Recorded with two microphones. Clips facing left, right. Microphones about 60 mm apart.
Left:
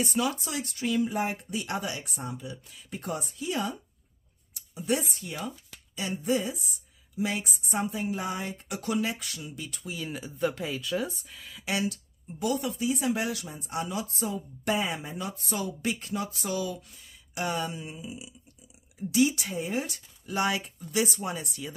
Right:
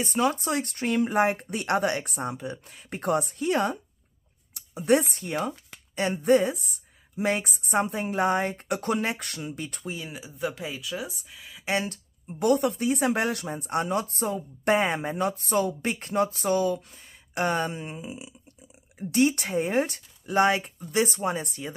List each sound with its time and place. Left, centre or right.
0.0 s speech: right
10.0 s speech: centre
11.6 s a woman's voice: right